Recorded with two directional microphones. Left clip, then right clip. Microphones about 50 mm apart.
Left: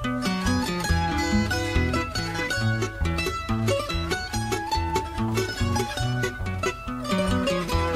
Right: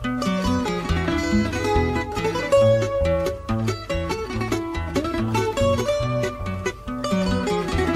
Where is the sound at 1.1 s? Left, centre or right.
Right.